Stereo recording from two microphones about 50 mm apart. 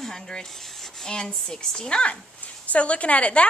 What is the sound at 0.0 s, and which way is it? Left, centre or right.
Rub, centre.